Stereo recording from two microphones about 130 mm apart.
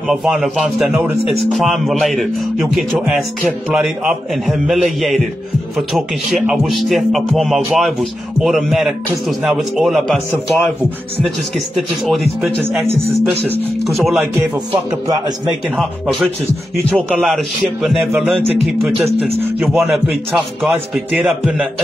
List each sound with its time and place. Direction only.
0.0 s speech: centre (ahead or behind)
13.2 s a man's voice: 20° right (ahead or behind)
13.8 s speech: centre (ahead or behind)
14.7 s speech: 45° right (ahead or behind)
15.7 s speech: centre (ahead or behind)
18.1 s a man's voice: 10° right (ahead or behind)